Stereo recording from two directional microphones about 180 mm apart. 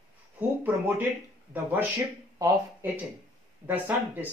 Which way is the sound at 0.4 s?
10° right (ahead or behind).